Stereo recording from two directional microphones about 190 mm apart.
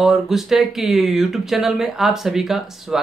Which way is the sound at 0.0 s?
Centre (ahead or behind).